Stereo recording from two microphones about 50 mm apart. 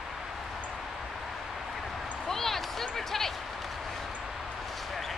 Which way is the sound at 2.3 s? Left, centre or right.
Centre.